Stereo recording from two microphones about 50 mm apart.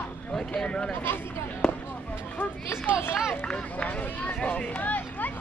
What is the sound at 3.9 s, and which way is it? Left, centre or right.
Speech, left.